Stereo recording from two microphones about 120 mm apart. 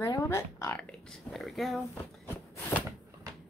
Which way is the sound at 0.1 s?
25° left (ahead or behind).